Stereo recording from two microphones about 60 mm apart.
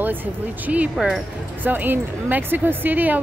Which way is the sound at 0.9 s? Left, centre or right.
Centre.